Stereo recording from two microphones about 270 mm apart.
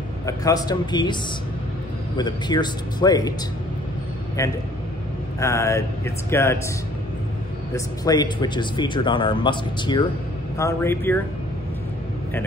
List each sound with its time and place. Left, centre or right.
0.3 s speech: centre
2.1 s speech: centre
5.4 s speech: centre
7.7 s speech: centre